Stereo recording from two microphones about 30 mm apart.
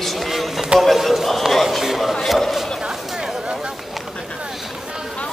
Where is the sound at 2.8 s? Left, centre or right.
Right.